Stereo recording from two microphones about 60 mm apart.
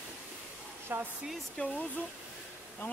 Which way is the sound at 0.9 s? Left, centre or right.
Right.